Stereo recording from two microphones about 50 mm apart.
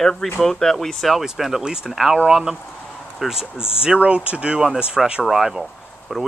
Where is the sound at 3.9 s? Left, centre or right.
Right; by 5.6 s centre.